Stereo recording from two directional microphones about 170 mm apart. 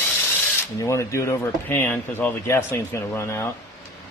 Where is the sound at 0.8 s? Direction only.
15° left (ahead or behind).